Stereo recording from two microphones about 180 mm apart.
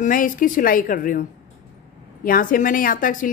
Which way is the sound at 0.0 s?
50° left (ahead or behind).